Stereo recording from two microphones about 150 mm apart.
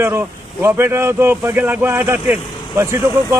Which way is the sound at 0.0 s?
15° right (ahead or behind).